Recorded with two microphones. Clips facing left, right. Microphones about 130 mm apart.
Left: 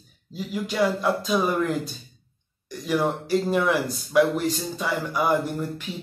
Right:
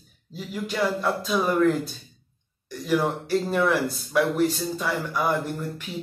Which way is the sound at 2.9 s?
5° left (ahead or behind).